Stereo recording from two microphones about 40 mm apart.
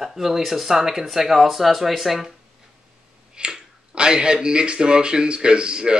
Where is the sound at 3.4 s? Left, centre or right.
Right.